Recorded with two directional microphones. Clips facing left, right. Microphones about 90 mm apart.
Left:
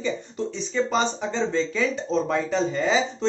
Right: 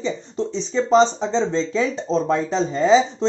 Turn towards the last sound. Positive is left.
turn(degrees=-30)  # may be behind; listen again after turning